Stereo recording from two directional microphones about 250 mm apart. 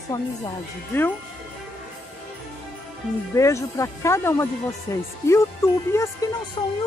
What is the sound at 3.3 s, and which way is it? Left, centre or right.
Speech, centre.